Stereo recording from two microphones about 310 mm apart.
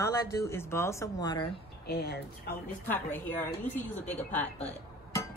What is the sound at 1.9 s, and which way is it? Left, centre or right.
Speech, left.